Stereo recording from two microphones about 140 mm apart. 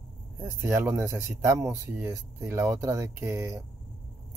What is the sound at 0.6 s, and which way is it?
A man's voice, 20° right (ahead or behind).